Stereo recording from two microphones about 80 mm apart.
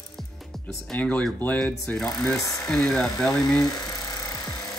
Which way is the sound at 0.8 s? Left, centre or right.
Centre.